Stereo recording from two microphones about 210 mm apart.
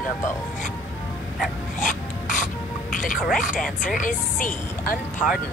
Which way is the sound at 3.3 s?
40° left (ahead or behind).